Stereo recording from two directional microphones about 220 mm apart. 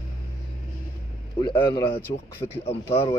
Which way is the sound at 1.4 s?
20° left (ahead or behind).